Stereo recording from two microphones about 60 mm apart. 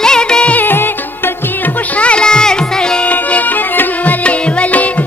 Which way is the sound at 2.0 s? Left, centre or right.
Centre.